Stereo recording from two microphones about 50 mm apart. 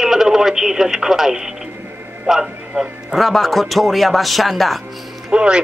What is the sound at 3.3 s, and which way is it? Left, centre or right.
Speech, centre.